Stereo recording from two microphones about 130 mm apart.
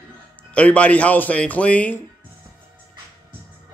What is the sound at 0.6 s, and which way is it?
Speech, 10° left (ahead or behind).